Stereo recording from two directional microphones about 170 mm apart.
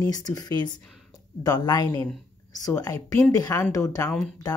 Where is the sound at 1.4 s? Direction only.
25° left (ahead or behind).